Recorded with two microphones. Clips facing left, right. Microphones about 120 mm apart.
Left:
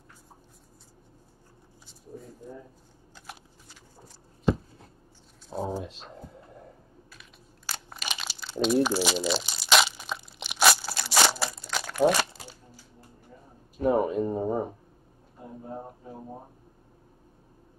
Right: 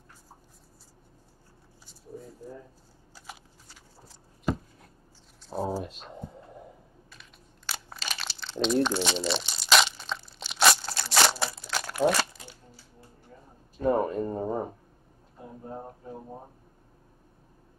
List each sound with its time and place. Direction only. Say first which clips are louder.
1.9 s speech: right 1 dB; centre (ahead or behind)
5.5 s speech: right 1 dB; 5° right (ahead or behind)
6.1 s whispering: right 3 dB; 15° right (ahead or behind)
7.1 s computer keyboard: left 1 dB; 5° left (ahead or behind)
8.0 s crumpling: left 1 dB; 10° left (ahead or behind)
13.8 s speech: left 1 dB; 10° left (ahead or behind)